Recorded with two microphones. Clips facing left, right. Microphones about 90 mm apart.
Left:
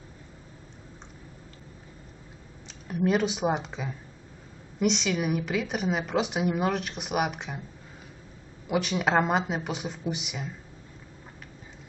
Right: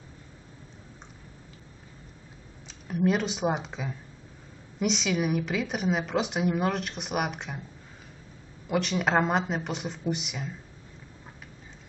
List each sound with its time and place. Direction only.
2.9 s a woman's voice: centre (ahead or behind)
8.6 s a woman's voice: 5° left (ahead or behind)